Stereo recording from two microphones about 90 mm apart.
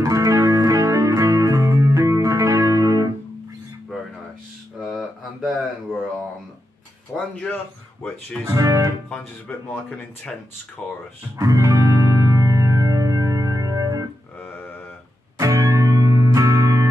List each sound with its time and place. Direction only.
0.0 s music: 40° right (ahead or behind)
4.8 s a sound: centre (ahead or behind)
7.2 s speech: 15° left (ahead or behind)
8.5 s speech: 40° right (ahead or behind)
9.1 s speech: 15° left (ahead or behind)
11.3 s music: 40° right (ahead or behind)
14.4 s a sound: 20° left (ahead or behind)
15.3 s music: 35° right (ahead or behind)